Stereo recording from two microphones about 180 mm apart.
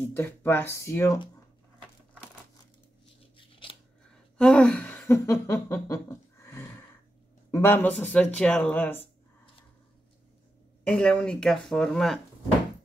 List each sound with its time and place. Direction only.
0.0 s speech: 10° left (ahead or behind)
3.3 s scissors: 30° left (ahead or behind)
4.1 s a sound: 5° left (ahead or behind)
7.5 s speech: 10° left (ahead or behind)
10.8 s speech: 5° left (ahead or behind)